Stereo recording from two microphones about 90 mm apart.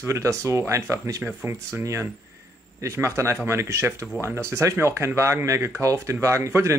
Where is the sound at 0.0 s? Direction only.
35° right (ahead or behind).